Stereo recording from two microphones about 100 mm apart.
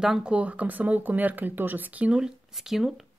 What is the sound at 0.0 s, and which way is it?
Speech, 5° right (ahead or behind).